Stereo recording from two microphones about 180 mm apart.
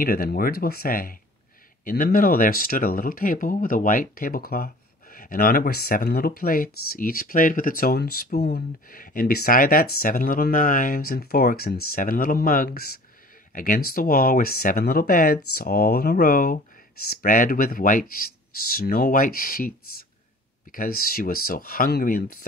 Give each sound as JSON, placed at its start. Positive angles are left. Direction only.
{"t": 0.0, "sound": "speech", "side_deg": 55}
{"t": 20.7, "sound": "speech", "side_deg": 55}